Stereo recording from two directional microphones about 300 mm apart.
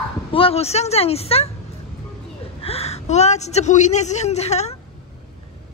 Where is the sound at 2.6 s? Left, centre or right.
Centre.